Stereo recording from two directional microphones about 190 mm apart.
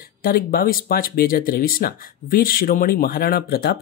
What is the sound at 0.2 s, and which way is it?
Speech, 50° left (ahead or behind).